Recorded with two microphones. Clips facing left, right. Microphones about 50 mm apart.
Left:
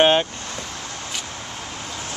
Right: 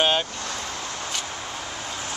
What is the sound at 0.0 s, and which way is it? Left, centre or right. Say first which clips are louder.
Vehicle: left 6 dB; left.